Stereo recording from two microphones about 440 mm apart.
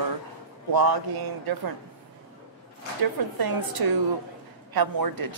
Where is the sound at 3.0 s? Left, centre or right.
Right.